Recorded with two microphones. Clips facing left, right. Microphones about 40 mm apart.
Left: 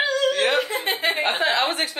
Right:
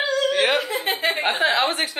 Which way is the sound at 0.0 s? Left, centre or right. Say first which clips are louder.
Even; centre.